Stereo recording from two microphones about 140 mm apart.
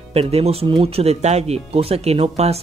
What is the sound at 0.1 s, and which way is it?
Speech, 45° right (ahead or behind).